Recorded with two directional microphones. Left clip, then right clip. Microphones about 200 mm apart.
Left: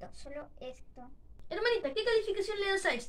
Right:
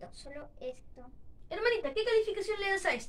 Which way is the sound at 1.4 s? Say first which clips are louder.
Even; 10° left (ahead or behind).